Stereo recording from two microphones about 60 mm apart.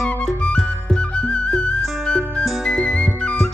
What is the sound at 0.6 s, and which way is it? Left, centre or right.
Music, centre.